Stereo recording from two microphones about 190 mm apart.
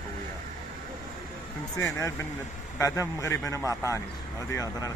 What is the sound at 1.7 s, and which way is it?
A man's voice, 15° left (ahead or behind).